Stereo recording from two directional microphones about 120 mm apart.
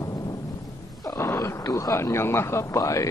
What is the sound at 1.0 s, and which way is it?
Speech, 25° left (ahead or behind).